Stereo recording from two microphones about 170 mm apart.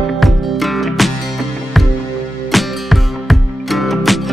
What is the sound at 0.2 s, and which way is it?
Music, centre (ahead or behind).